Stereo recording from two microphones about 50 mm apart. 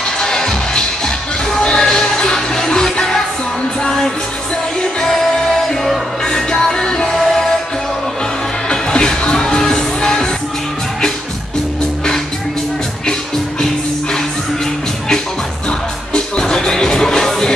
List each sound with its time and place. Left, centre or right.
0.2 s music: centre
8.6 s music: centre
16.1 s music: centre